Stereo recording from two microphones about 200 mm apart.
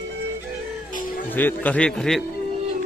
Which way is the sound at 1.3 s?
10° left (ahead or behind).